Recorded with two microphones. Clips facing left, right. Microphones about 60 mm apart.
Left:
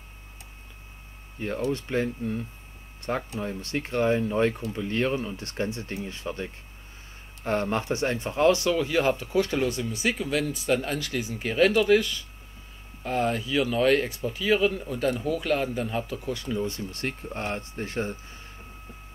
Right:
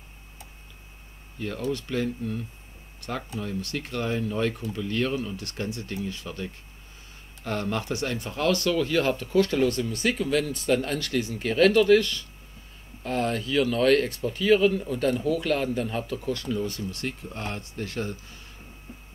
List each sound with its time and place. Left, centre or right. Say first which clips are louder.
1.4 s speech: left 2 dB; left; by 16.6 s centre
16.6 s speech: even; left